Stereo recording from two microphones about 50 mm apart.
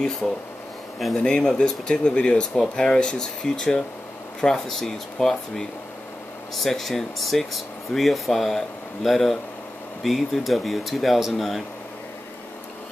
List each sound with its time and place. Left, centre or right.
0.2 s speech: centre
1.1 s speech: centre